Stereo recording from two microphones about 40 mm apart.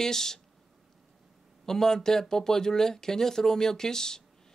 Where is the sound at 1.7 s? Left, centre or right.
Centre.